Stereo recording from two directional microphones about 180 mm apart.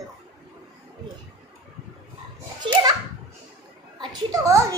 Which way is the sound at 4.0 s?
20° right (ahead or behind).